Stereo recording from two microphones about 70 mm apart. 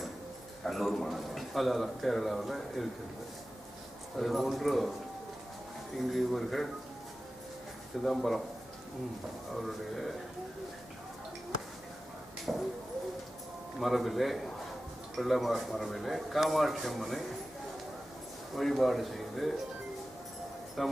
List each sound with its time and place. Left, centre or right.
0.7 s a man's voice: centre
4.2 s a man's voice: centre
6.1 s a man's voice: centre
8.0 s a man's voice: centre
9.5 s a man's voice: centre
12.5 s a sound: centre
13.7 s a man's voice: centre
18.6 s a man's voice: centre
20.8 s a man's voice: centre